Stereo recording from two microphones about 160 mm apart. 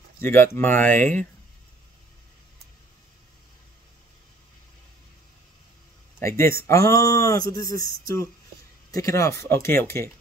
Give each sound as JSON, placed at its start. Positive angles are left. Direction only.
{"t": 0.2, "sound": "speech", "side_deg": 15}
{"t": 6.1, "sound": "speech", "side_deg": 15}